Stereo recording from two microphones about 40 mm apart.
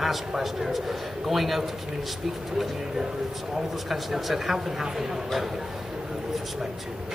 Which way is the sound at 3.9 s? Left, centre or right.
Centre.